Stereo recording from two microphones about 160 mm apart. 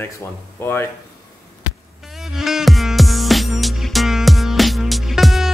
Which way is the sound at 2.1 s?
Centre (ahead or behind).